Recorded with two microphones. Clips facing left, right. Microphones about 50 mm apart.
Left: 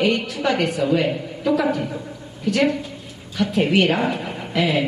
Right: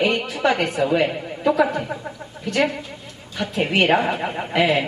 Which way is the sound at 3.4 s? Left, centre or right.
Centre.